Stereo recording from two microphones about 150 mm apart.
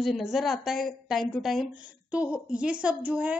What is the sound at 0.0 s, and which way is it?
A woman's voice, centre (ahead or behind).